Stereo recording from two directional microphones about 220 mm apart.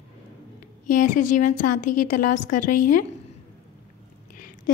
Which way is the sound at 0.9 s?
35° left (ahead or behind).